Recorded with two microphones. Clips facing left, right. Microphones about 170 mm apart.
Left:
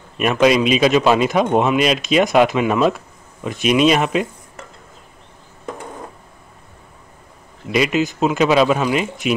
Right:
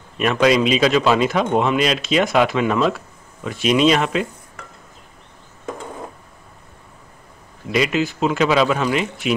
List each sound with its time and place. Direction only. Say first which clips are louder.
0.2 s speech: left 1 dB; 15° left (ahead or behind)
7.7 s speech: left 2 dB; 15° left (ahead or behind)